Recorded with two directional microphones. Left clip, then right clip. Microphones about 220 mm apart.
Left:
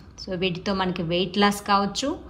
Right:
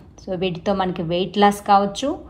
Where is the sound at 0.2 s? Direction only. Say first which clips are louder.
Right 3 dB; 5° left (ahead or behind).